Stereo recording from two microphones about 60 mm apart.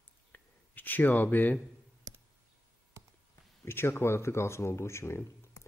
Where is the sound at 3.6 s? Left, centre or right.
Left.